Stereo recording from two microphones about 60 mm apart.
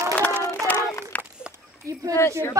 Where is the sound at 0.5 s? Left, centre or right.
Left.